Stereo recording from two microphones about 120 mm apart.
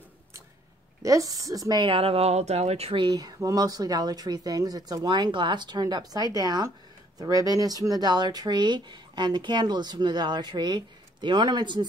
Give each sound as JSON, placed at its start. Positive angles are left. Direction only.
{"t": 1.0, "sound": "a woman's voice", "side_deg": -30}
{"t": 1.9, "sound": "speech", "side_deg": -50}
{"t": 3.0, "sound": "speech", "side_deg": -35}